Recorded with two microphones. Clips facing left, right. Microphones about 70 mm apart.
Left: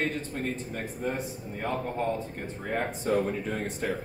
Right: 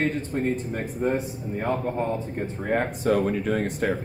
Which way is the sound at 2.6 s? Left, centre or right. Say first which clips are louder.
Right 6 dB; right.